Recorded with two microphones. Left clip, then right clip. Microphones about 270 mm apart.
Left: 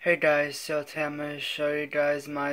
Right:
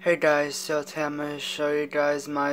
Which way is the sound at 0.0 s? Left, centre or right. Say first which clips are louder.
Right 1 dB; centre.